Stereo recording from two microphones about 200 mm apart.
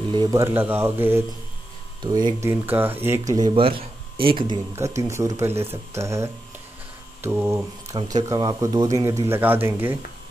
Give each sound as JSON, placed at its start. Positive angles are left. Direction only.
{"t": 0.1, "sound": "speech", "side_deg": -20}
{"t": 2.0, "sound": "speech", "side_deg": -20}
{"t": 2.6, "sound": "speech", "side_deg": -10}
{"t": 4.7, "sound": "speech", "side_deg": -15}